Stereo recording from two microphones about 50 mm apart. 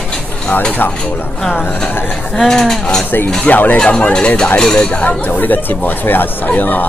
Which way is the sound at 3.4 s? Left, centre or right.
Left.